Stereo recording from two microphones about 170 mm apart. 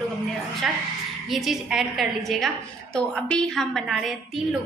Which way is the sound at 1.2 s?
Centre (ahead or behind).